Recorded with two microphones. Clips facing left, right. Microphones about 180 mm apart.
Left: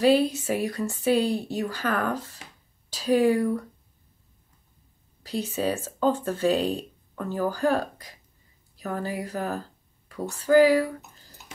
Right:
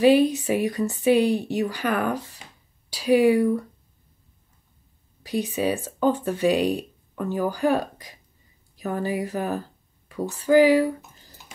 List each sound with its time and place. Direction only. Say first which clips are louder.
0.0 s speech: right 3 dB; 20° right (ahead or behind)
5.2 s speech: right 3 dB; 15° right (ahead or behind)